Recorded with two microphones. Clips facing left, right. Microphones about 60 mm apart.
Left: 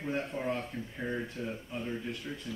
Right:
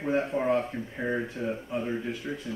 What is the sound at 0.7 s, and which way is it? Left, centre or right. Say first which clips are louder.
Speech: right 6 dB; right.